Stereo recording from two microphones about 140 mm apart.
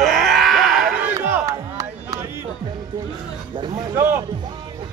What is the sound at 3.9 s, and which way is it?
Speech, 20° right (ahead or behind).